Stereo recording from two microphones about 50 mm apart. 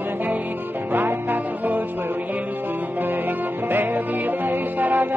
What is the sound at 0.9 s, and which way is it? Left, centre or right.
Music, right.